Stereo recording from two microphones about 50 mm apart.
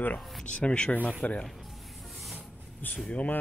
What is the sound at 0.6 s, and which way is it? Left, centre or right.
Speech, left.